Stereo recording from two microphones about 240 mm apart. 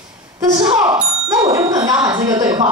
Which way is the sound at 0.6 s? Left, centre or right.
Centre.